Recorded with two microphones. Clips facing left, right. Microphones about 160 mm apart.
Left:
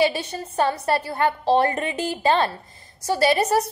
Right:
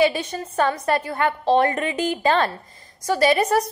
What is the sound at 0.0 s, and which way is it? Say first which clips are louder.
A woman's voice: right 2 dB; 35° left (ahead or behind).